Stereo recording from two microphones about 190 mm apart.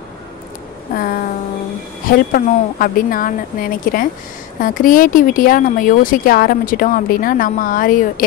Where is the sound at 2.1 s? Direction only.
50° left (ahead or behind).